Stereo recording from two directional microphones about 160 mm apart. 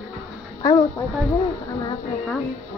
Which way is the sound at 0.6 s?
25° left (ahead or behind).